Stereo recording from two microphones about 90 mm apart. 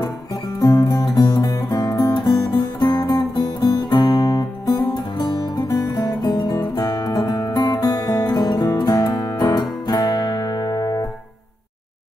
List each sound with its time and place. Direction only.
0.0 s music: 40° left (ahead or behind)